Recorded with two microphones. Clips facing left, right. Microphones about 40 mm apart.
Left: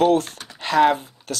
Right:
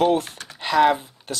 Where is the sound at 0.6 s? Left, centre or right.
Centre.